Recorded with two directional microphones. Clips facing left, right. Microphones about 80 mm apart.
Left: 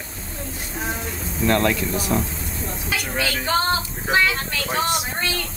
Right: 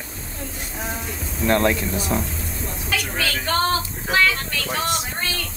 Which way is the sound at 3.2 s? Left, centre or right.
Centre.